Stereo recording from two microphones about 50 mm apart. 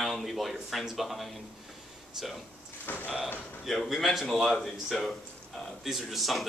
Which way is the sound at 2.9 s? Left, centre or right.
Left.